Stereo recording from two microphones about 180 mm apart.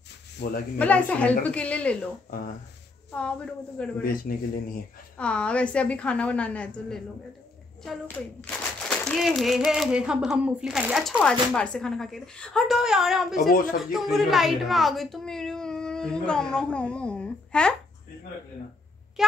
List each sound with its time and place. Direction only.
0.4 s speech: 65° left (ahead or behind)
0.7 s a woman's voice: 10° left (ahead or behind)
3.2 s speech: 5° left (ahead or behind)
4.0 s speech: 55° left (ahead or behind)
5.1 s a woman's voice: 5° left (ahead or behind)
13.4 s speech: 50° left (ahead or behind)
13.7 s a woman's voice: centre (ahead or behind)
19.2 s speech: centre (ahead or behind)